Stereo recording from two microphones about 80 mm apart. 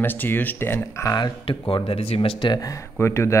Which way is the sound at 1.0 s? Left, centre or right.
Left.